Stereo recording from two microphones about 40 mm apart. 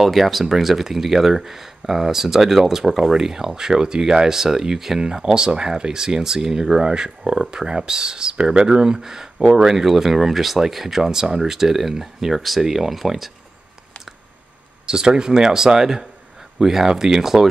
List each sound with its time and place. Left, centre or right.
0.0 s speech: centre
14.9 s speech: centre